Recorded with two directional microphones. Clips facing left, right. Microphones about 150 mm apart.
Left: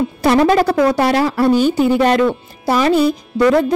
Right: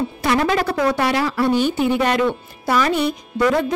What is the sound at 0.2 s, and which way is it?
Speech, 35° left (ahead or behind).